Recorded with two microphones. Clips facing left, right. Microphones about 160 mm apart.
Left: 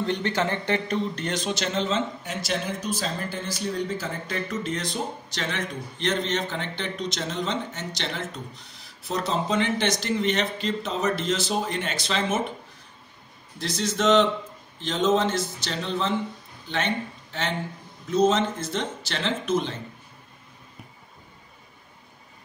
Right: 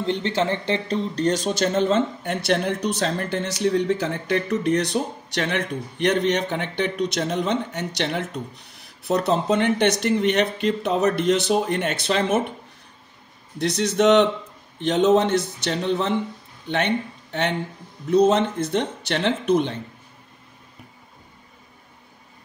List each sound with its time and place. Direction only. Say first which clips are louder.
0.0 s speech: right 3 dB; 25° right (ahead or behind); by 12.4 s 60° right (ahead or behind)
13.6 s speech: right 6 dB; 65° right (ahead or behind)